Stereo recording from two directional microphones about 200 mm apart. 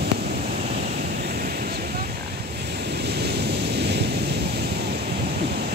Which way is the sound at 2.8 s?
55° right (ahead or behind).